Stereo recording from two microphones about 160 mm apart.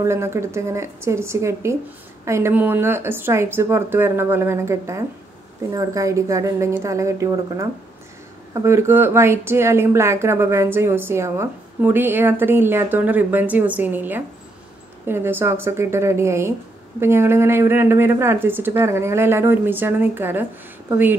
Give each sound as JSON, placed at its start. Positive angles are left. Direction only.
{"t": 0.0, "sound": "a woman's voice", "side_deg": -15}